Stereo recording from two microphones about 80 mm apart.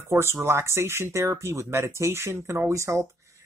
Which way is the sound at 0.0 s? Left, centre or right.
Right.